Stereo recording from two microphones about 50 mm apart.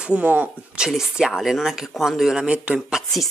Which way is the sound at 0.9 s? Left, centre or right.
Centre.